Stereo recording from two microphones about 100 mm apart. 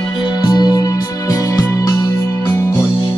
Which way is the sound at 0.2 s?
45° left (ahead or behind).